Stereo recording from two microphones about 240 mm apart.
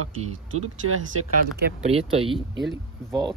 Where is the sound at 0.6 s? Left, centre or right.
Right.